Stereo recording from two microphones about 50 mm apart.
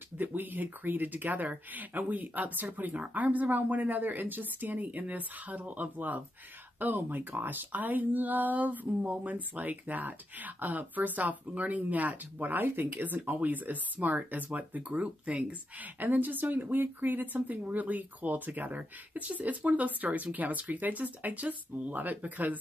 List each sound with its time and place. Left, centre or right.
0.2 s speech: right
16.0 s speech: right